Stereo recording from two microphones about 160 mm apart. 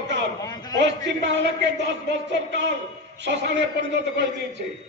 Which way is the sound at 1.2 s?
90° right.